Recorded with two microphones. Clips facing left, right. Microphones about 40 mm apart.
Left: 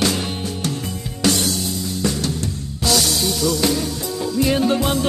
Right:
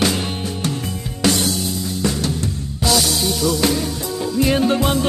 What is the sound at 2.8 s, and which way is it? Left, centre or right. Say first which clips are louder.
Music: right 1 dB; centre.